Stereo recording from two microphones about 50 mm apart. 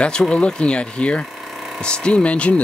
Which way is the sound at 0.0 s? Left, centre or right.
Centre.